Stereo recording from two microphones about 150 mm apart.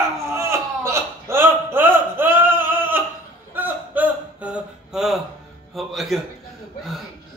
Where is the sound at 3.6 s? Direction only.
10° right (ahead or behind).